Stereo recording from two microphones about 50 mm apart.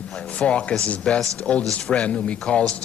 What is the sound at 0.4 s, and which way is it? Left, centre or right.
Speech, left.